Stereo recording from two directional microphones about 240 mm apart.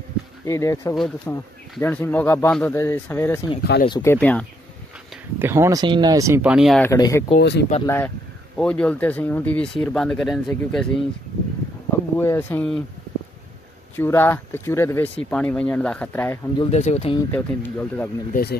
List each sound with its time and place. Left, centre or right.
0.5 s speech: centre
5.4 s speech: centre
6.9 s speech: centre
7.3 s speech: left
7.8 s speech: centre
12.2 s speech: centre
13.9 s speech: centre
16.7 s speech: left
17.3 s speech: centre
18.3 s speech: left